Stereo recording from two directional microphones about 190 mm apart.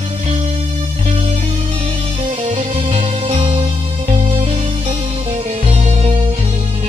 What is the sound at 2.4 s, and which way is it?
Music, 30° right (ahead or behind).